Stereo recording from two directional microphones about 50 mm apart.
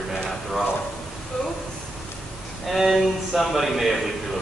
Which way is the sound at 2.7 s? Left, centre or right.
Centre.